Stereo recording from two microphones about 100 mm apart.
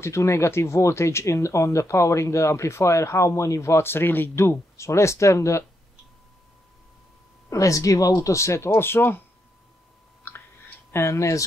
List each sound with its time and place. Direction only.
0.0 s speech: 30° left (ahead or behind)
7.4 s speech: 35° left (ahead or behind)
10.3 s a sound: 20° left (ahead or behind)
10.9 s speech: 25° left (ahead or behind)